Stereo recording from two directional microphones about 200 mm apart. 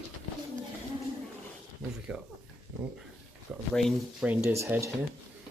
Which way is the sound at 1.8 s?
5° right (ahead or behind).